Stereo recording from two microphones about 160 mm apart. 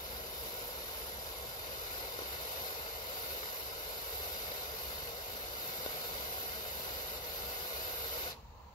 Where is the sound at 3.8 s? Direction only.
30° left (ahead or behind).